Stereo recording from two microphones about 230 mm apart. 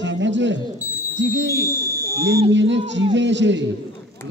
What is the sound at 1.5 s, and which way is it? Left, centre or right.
Speech, centre.